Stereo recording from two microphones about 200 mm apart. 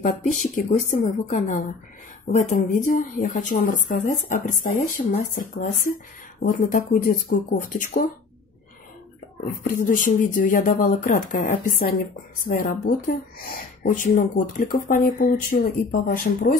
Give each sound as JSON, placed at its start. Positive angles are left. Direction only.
{"t": 0.0, "sound": "speech", "side_deg": 40}
{"t": 9.7, "sound": "speech", "side_deg": 45}